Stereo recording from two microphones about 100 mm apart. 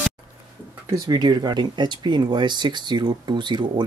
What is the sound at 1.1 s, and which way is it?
Speech, 45° right (ahead or behind).